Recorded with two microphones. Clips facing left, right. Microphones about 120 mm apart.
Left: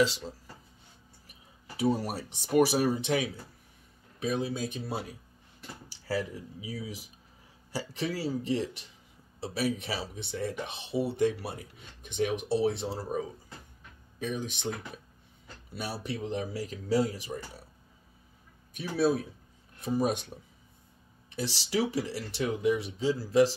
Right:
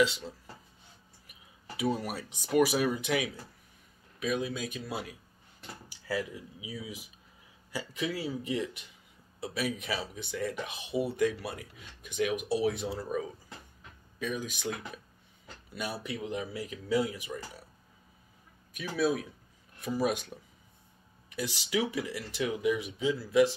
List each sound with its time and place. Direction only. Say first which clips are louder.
1.8 s speech: left 3 dB; 35° left (ahead or behind)
10.9 s speech: left 1 dB; 5° right (ahead or behind)
11.1 s speech: left 1 dB; 30° left (ahead or behind)
15.8 s speech: left 1 dB; 35° left (ahead or behind)
18.8 s speech: left 2 dB; 35° left (ahead or behind)
21.3 s speech: left 1 dB; 35° left (ahead or behind)